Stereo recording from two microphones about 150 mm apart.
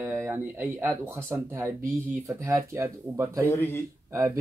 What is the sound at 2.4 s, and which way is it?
Speech, 15° right (ahead or behind).